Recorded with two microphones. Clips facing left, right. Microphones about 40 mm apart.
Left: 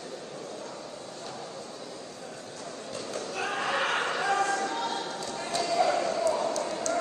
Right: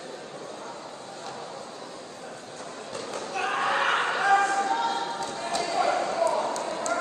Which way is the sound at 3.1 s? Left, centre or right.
Right.